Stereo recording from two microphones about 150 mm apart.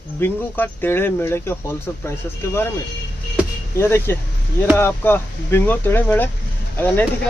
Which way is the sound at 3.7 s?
15° left (ahead or behind).